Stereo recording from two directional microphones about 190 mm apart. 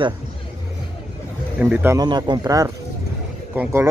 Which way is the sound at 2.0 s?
20° right (ahead or behind).